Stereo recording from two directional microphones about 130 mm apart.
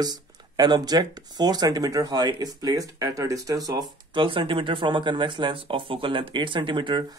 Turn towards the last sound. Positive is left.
turn(degrees=-40)  # may be behind; listen again after turning